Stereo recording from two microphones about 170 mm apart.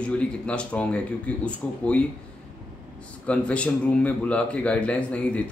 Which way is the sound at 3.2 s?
5° left (ahead or behind).